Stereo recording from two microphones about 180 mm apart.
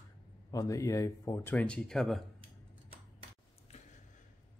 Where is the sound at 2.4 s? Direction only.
30° right (ahead or behind).